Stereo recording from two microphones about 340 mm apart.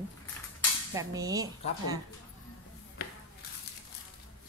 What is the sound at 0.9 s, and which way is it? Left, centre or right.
Speech, centre.